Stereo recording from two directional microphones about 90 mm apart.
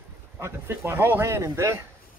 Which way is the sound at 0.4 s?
25° right (ahead or behind).